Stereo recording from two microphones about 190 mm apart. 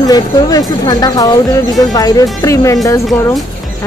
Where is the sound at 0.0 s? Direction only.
20° left (ahead or behind).